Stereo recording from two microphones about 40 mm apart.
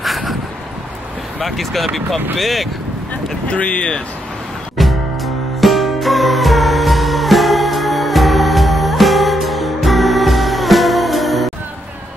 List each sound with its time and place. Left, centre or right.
0.0 s a sound: centre
1.4 s speech: centre
3.4 s speech: left
4.7 s music: centre